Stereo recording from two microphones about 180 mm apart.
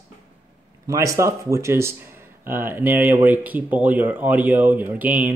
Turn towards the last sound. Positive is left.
turn(degrees=-10)  # may be behind; listen again after turning